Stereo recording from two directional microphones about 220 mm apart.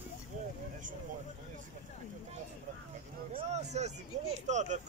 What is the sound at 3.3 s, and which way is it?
Speech, 30° right (ahead or behind).